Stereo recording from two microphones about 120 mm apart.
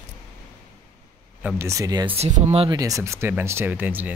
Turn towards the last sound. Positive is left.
turn(degrees=-15)  # may be behind; listen again after turning